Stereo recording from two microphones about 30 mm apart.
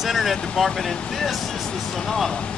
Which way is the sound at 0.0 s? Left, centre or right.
Centre.